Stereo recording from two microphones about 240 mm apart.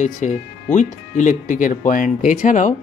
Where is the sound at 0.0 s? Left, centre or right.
Left.